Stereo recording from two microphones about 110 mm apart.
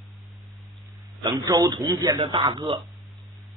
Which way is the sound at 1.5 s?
30° right (ahead or behind).